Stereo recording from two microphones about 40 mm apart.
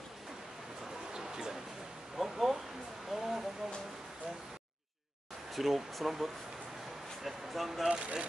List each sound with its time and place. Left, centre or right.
1.1 s a sound: centre
5.5 s speech: centre
7.9 s speech: right